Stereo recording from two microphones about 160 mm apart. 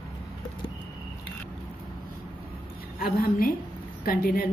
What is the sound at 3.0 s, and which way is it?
A woman's voice, 65° left (ahead or behind).